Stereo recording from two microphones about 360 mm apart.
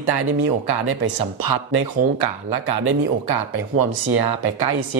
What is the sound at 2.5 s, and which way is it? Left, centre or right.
Speech, right.